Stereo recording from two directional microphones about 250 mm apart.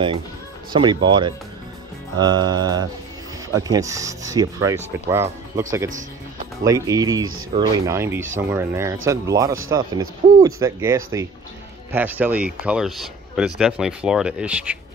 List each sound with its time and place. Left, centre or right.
0.7 s speech: centre